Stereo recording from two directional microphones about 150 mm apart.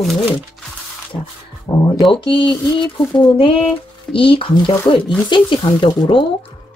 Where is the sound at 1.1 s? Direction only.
35° left (ahead or behind).